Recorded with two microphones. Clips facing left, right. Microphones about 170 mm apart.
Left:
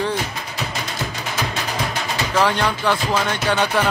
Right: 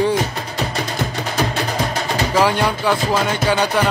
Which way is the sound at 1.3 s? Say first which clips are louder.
Right 5 dB; 35° right (ahead or behind).